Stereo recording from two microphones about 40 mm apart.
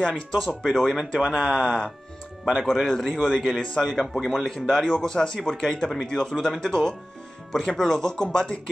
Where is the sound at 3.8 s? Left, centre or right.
Centre.